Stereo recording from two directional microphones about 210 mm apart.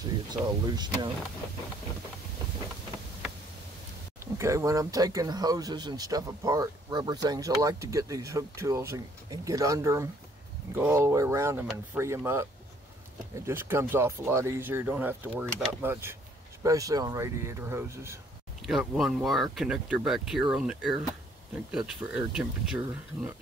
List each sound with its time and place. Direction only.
0.3 s speech: 20° right (ahead or behind)
4.2 s speech: 15° right (ahead or behind)
13.5 s speech: 10° right (ahead or behind)
18.6 s speech: centre (ahead or behind)